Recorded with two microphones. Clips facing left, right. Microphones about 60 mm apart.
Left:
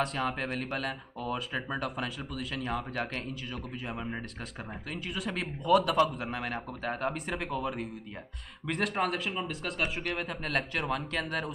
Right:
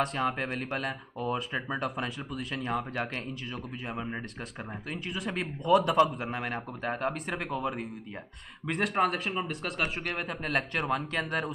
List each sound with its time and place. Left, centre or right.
0.3 s speech: centre
1.3 s speech: centre
6.3 s speech: centre